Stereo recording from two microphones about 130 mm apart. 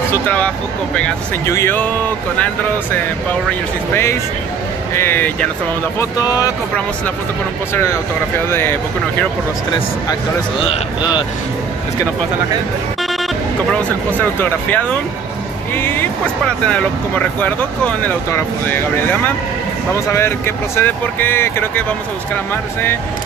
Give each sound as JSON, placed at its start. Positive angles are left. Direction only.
{"t": 0.1, "sound": "speech", "side_deg": 10}
{"t": 4.9, "sound": "speech", "side_deg": 15}
{"t": 5.9, "sound": "speech", "side_deg": 30}
{"t": 8.5, "sound": "speech", "side_deg": 15}
{"t": 14.4, "sound": "speech", "side_deg": 15}